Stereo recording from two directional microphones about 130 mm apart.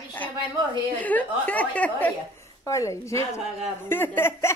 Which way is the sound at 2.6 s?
25° left (ahead or behind).